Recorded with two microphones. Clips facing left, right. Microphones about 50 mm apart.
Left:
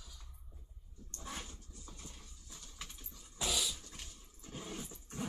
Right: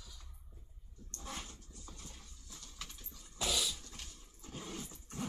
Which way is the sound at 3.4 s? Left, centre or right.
Centre.